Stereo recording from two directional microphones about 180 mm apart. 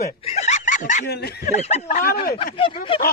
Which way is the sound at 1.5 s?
35° left (ahead or behind).